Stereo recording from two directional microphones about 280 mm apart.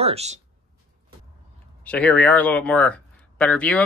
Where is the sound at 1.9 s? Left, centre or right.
Centre.